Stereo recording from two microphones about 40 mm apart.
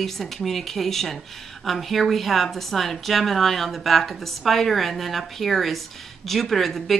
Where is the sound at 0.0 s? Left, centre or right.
Centre.